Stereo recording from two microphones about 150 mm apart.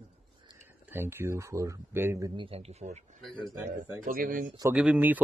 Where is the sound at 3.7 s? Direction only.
65° right (ahead or behind).